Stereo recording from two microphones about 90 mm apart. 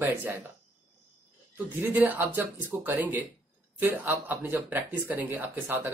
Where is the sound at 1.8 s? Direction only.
20° right (ahead or behind).